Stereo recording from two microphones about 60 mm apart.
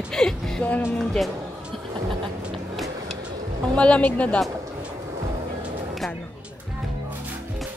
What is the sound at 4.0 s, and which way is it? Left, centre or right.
Speech, left.